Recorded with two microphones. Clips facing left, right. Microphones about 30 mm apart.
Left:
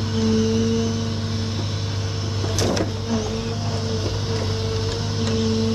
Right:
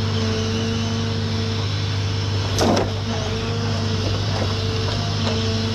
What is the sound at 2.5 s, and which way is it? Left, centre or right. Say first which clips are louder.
Vehicle: right 5 dB; centre.